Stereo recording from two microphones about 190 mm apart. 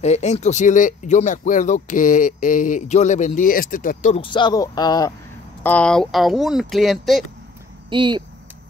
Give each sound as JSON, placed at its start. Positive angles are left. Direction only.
{"t": 0.0, "sound": "speech", "side_deg": 35}
{"t": 4.2, "sound": "speech", "side_deg": 25}
{"t": 5.6, "sound": "speech", "side_deg": 10}
{"t": 7.9, "sound": "speech", "side_deg": -25}